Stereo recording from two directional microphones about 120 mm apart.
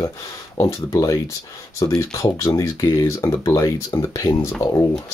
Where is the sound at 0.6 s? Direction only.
25° left (ahead or behind).